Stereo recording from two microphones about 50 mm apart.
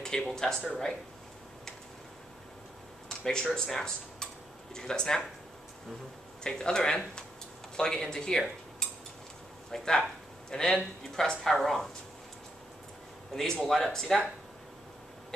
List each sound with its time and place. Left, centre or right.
0.0 s speech: centre
3.1 s a sound: centre
3.5 s speech: centre
6.4 s speech: centre
13.3 s speech: centre